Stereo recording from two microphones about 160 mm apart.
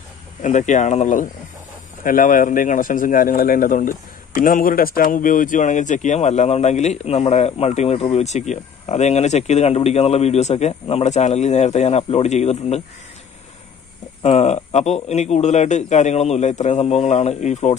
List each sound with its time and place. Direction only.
0.4 s speech: 50° left (ahead or behind)
14.2 s speech: 45° left (ahead or behind)